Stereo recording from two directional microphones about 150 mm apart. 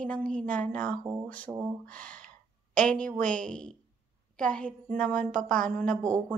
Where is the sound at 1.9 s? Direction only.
10° left (ahead or behind).